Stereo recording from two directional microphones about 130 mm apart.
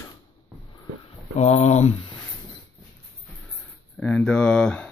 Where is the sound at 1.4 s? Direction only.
55° left (ahead or behind).